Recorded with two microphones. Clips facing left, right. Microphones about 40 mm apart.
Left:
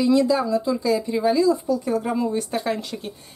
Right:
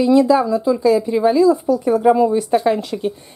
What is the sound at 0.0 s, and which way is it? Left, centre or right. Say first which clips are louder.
Speech: right 6 dB; centre.